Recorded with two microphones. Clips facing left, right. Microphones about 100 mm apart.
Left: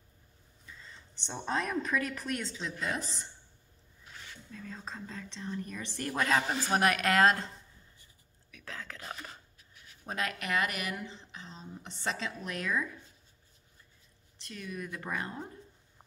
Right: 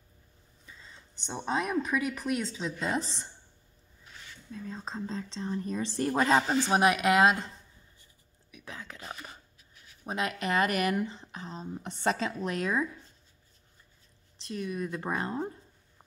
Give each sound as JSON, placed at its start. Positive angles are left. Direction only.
{"t": 1.2, "sound": "a woman's voice", "side_deg": -15}
{"t": 4.5, "sound": "a woman's voice", "side_deg": -20}
{"t": 8.5, "sound": "a sound", "side_deg": -15}
{"t": 10.0, "sound": "speech", "side_deg": -20}
{"t": 14.4, "sound": "speech", "side_deg": -25}